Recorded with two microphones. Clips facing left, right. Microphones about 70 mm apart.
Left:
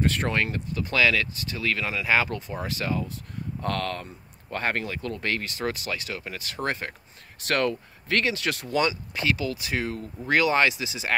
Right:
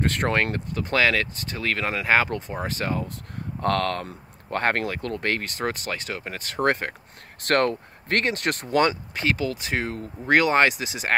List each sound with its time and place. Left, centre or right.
0.0 s speech: right
3.6 s speech: right